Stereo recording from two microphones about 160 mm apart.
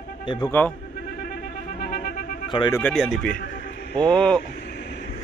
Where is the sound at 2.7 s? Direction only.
10° left (ahead or behind).